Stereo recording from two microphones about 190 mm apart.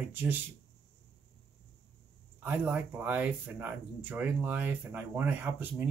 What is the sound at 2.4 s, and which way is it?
Speech, 10° right (ahead or behind).